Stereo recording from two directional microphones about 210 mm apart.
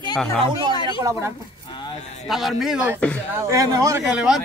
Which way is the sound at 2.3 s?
Centre (ahead or behind).